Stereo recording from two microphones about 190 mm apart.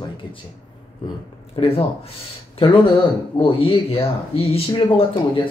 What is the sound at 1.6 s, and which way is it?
Speech, 25° left (ahead or behind).